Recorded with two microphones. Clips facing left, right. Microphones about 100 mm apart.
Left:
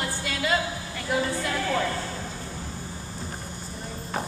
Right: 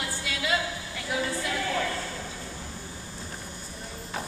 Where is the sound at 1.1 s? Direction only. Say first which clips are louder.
Left 3 dB; 45° left (ahead or behind).